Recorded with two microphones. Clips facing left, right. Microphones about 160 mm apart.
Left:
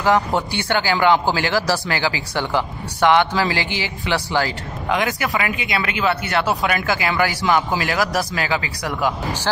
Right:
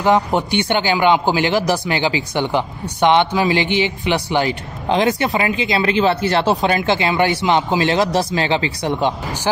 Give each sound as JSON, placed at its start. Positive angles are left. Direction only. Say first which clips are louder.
{"t": 0.0, "sound": "speech", "louder": "right 2 dB", "side_deg": -20}